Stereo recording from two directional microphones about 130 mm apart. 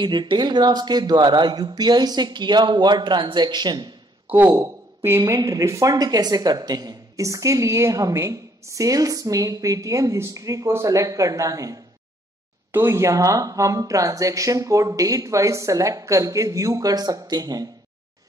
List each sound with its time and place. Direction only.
0.0 s speech: 35° right (ahead or behind)
4.5 s speech: 25° right (ahead or behind)